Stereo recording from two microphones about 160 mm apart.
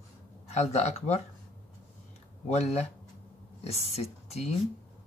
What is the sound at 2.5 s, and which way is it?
Speech, 40° left (ahead or behind).